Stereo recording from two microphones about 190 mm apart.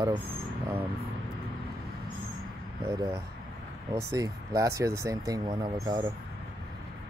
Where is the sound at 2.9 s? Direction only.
15° right (ahead or behind).